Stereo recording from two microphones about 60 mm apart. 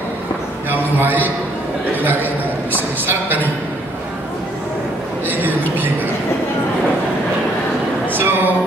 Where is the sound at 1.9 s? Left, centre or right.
Right.